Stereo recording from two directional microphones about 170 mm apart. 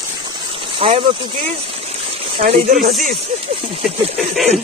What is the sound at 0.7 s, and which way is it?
Speech, 30° right (ahead or behind).